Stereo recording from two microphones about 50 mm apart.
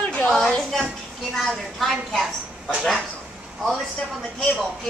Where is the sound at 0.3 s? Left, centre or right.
Centre.